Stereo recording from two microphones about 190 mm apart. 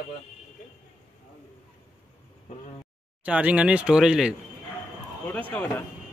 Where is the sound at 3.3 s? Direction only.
5° right (ahead or behind).